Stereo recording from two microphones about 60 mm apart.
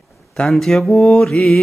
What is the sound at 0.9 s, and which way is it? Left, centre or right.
Mantra, centre.